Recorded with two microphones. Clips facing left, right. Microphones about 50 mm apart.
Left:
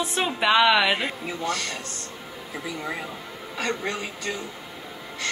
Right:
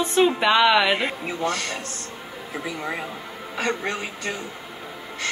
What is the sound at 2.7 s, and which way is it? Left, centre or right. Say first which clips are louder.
Speech: right 2 dB; right.